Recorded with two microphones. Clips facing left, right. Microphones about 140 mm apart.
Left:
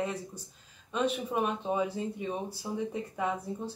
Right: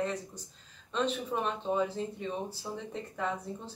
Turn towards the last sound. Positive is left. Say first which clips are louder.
# left 2 dB
turn(degrees=10)  # may be behind; listen again after turning